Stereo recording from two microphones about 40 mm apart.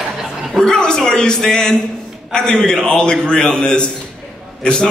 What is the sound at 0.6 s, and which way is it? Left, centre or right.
A man's voice, centre.